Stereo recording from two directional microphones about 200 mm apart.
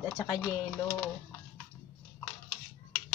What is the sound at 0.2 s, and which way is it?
Speech, 15° left (ahead or behind).